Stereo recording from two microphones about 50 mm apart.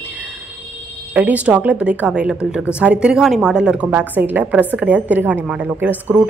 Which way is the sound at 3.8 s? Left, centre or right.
Right.